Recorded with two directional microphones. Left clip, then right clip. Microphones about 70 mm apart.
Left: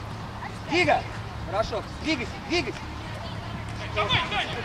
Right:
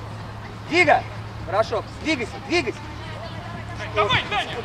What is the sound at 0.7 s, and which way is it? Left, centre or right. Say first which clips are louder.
Speech: right 5 dB; right.